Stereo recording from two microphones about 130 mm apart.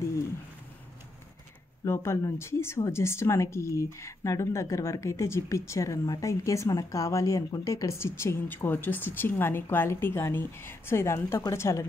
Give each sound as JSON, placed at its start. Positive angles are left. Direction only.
{"t": 1.9, "sound": "speech", "side_deg": 20}